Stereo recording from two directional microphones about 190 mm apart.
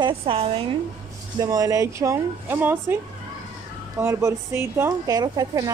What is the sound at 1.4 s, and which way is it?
Speech, 20° right (ahead or behind).